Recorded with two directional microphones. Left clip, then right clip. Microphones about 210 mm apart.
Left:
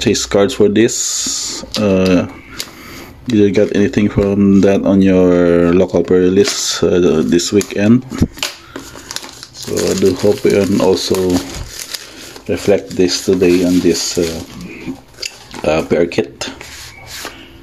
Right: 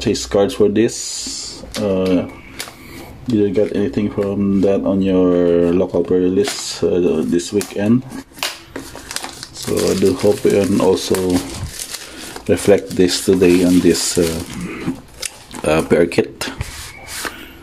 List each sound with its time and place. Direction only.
0.0 s speech: 20° left (ahead or behind)
3.3 s speech: 30° left (ahead or behind)
9.7 s speech: 5° left (ahead or behind)
12.4 s speech: 5° right (ahead or behind)
15.6 s speech: 5° right (ahead or behind)